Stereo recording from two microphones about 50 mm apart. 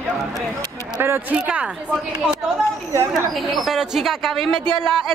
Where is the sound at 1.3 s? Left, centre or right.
Right.